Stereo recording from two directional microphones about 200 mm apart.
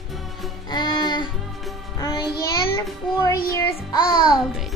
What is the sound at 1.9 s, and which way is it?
Music, 20° left (ahead or behind).